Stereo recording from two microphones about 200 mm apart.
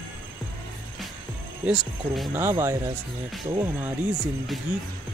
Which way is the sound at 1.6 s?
5° right (ahead or behind).